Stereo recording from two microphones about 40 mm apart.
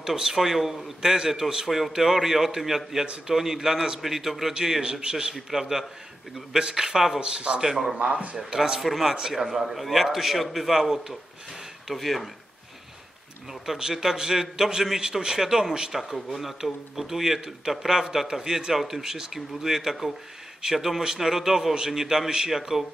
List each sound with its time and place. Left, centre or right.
0.0 s speech: centre
7.2 s speech: right
7.6 s speech: centre
7.9 s speech: right
8.4 s speech: centre
11.9 s speech: centre
13.5 s speech: centre
15.9 s speech: centre